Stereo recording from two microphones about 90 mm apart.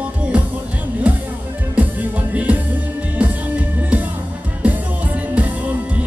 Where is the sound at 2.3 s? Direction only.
15° right (ahead or behind).